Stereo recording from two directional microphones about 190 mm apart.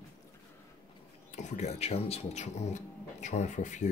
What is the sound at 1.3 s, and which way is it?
Speech, 35° left (ahead or behind).